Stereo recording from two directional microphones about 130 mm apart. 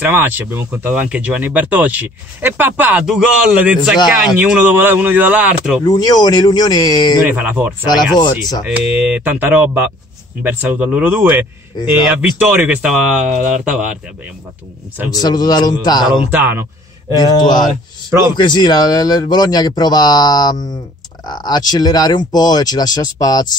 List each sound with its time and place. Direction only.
0.0 s speech: 15° right (ahead or behind)
5.9 s speech: 30° left (ahead or behind)
7.2 s speech: 15° right (ahead or behind)
7.8 s speech: 30° left (ahead or behind)
8.6 s speech: 10° right (ahead or behind)
15.1 s speech: 30° left (ahead or behind)
16.3 s speech: 15° right (ahead or behind)
18.3 s speech: 35° left (ahead or behind)